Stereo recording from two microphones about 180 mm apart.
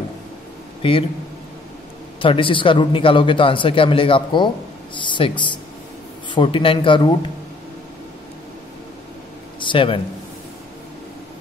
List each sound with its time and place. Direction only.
0.8 s speech: 30° left (ahead or behind)
2.2 s speech: 30° left (ahead or behind)
9.6 s a man's voice: 30° left (ahead or behind)